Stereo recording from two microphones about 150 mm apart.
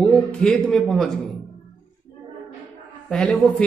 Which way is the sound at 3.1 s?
5° left (ahead or behind).